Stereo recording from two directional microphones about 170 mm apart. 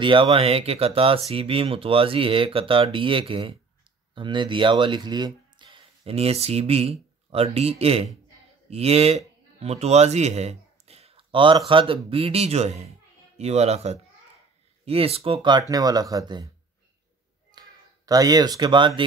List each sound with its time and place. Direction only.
0.0 s speech: 30° right (ahead or behind)
17.6 s speech: 20° right (ahead or behind)